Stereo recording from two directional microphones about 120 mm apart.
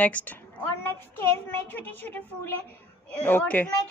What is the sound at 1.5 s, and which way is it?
A woman's voice, 15° left (ahead or behind).